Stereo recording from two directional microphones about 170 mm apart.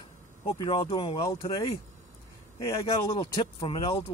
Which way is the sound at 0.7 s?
30° left (ahead or behind).